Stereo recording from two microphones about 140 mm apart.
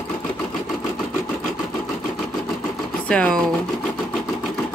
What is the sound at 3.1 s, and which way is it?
Speech, 10° left (ahead or behind).